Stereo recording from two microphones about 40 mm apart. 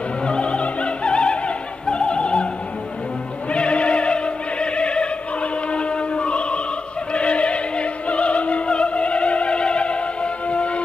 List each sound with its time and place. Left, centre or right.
0.2 s opera: left
3.5 s opera: left